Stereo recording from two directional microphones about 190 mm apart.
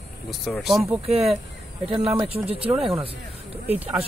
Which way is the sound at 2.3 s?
30° right (ahead or behind).